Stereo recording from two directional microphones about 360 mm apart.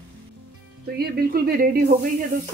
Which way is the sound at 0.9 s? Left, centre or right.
Right.